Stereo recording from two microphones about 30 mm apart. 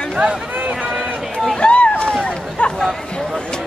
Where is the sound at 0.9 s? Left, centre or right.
Centre.